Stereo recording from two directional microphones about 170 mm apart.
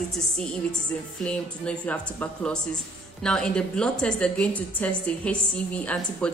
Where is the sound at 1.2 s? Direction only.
5° left (ahead or behind).